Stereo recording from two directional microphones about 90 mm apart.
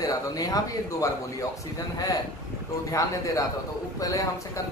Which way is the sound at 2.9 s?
40° left (ahead or behind).